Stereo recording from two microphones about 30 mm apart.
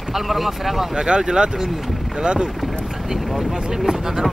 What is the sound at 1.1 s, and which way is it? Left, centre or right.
Speech, right.